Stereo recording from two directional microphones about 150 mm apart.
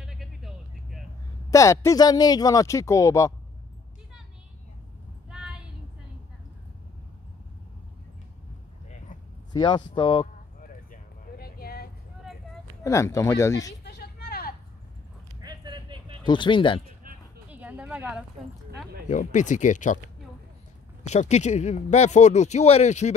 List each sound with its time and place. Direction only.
0.0 s vehicle: centre (ahead or behind)
1.5 s speech: 20° left (ahead or behind)
5.3 s child singing: 5° right (ahead or behind)
9.5 s speech: 30° left (ahead or behind)
10.6 s a sound: 70° left (ahead or behind); by 11.9 s 90° left
12.8 s speech: 20° left (ahead or behind)
13.8 s vehicle: 90° left
15.4 s a sound: 30° right (ahead or behind)
16.3 s speech: 35° left (ahead or behind)
17.5 s a sound: 10° right (ahead or behind)
19.0 s speech: 55° left (ahead or behind)
21.0 s speech: 50° left (ahead or behind)